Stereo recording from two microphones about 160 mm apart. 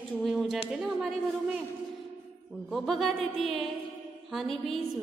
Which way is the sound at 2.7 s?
Centre (ahead or behind).